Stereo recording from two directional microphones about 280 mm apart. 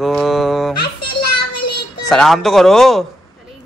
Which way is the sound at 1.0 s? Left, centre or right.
Left.